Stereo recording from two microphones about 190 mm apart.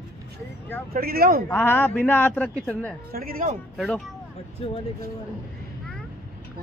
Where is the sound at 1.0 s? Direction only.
50° right (ahead or behind).